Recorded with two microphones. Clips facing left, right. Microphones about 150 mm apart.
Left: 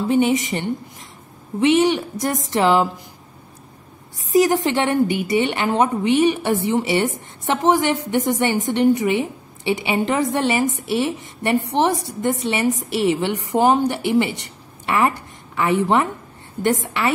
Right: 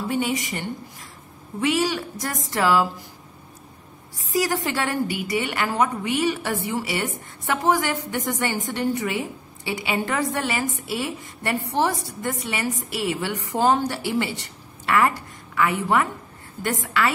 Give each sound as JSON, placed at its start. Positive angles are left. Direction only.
{"t": 0.1, "sound": "a woman's voice", "side_deg": 20}
{"t": 4.3, "sound": "a woman's voice", "side_deg": 20}